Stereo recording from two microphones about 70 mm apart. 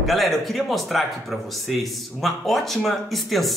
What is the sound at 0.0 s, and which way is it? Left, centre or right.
Speech, centre.